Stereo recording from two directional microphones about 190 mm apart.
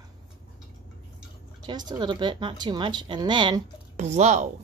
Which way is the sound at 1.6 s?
20° right (ahead or behind).